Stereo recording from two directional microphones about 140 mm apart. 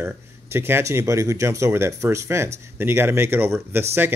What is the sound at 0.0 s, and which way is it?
Speech, 15° right (ahead or behind).